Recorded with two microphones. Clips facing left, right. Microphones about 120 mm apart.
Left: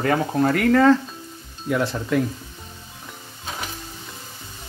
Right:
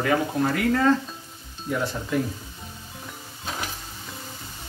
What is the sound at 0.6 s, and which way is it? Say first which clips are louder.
Speech: left 6 dB; 70° left (ahead or behind).